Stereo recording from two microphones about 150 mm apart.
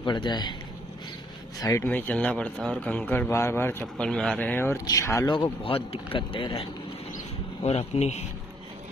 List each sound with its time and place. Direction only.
0.0 s a man's voice: 30° left (ahead or behind)
1.6 s speech: 20° left (ahead or behind)
5.3 s speech: 35° left (ahead or behind)